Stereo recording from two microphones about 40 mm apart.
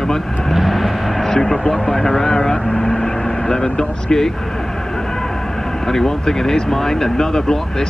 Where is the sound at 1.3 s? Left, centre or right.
Centre.